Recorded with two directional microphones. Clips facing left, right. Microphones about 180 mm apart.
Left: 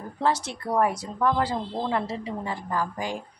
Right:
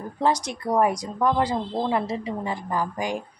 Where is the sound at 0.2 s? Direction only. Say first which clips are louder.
Right 2 dB; 15° right (ahead or behind).